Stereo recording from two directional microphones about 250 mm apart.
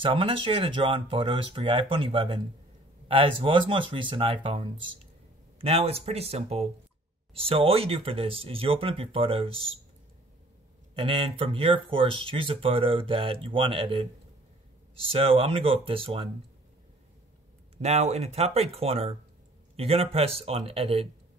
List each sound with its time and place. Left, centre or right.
0.0 s speech: right
11.0 s speech: right
17.7 s speech: right